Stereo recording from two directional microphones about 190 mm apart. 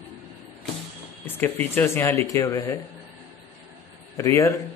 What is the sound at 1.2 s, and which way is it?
Speech, 10° left (ahead or behind).